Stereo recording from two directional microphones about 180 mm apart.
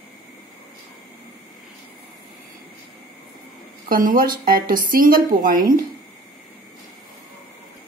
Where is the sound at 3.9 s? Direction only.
50° right (ahead or behind).